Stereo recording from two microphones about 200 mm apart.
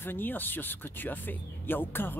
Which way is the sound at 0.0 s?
10° left (ahead or behind).